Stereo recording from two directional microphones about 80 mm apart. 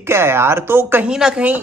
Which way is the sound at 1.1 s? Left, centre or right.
Centre.